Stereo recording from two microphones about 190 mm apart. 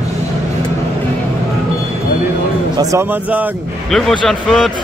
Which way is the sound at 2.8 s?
15° right (ahead or behind).